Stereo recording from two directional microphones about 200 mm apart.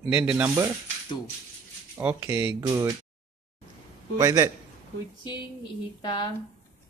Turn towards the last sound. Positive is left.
turn(degrees=20)  # may be behind; listen again after turning